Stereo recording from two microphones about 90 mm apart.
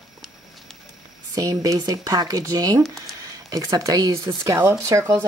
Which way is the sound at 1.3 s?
40° right (ahead or behind).